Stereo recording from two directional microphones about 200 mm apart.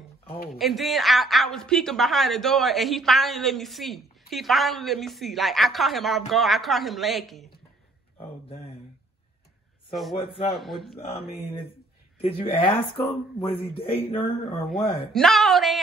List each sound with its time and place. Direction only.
0.5 s a woman's voice: centre (ahead or behind)
8.5 s a sound: 30° left (ahead or behind)
10.3 s a woman's voice: centre (ahead or behind)
11.0 s speech: 30° left (ahead or behind)
15.1 s a woman's voice: centre (ahead or behind)